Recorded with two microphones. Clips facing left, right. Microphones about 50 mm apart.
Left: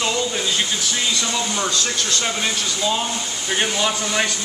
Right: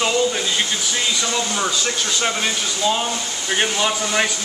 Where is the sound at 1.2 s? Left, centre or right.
Centre.